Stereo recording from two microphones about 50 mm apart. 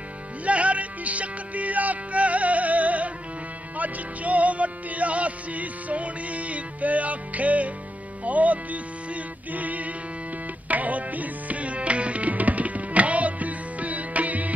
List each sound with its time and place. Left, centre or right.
0.5 s music: right
10.7 s tabla: right